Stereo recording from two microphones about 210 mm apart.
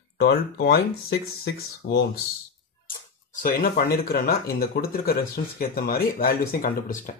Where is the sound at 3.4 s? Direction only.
45° left (ahead or behind).